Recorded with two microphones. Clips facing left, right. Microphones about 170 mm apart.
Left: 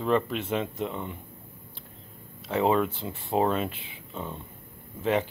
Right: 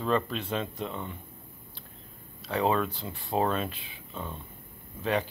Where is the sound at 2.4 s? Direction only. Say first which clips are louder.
Left 3 dB; 20° left (ahead or behind).